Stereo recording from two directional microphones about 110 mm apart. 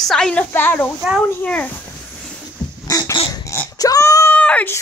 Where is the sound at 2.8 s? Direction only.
40° left (ahead or behind).